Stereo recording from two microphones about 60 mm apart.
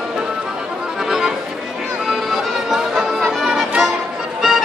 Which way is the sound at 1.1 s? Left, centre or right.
Centre.